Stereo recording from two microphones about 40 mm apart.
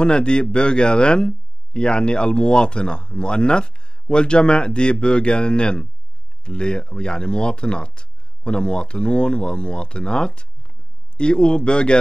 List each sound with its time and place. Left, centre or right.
0.0 s speech: left